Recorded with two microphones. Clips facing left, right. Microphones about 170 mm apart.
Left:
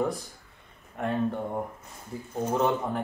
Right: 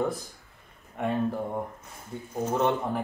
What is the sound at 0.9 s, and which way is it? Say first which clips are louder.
Speech: even; centre (ahead or behind).